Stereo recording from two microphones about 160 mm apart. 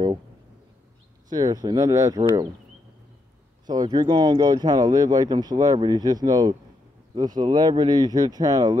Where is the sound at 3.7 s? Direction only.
25° right (ahead or behind).